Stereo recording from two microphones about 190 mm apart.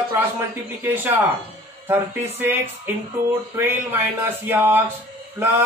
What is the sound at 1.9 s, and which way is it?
Speech, 10° right (ahead or behind).